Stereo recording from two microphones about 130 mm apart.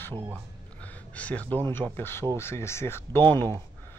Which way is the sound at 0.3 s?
10° left (ahead or behind).